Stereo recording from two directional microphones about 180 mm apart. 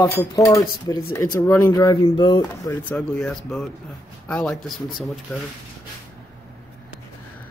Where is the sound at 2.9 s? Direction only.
5° left (ahead or behind).